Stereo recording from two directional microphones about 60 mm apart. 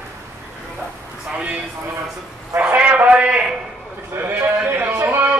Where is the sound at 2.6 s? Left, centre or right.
Right.